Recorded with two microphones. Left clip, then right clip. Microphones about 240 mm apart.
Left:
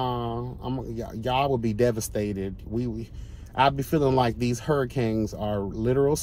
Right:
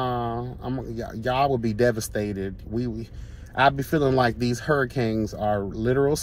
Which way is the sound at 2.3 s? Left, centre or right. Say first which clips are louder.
Right 1 dB; centre.